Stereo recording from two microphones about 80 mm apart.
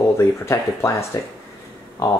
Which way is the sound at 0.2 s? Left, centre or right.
Left.